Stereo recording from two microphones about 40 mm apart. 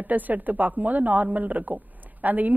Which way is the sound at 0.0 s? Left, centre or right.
Right.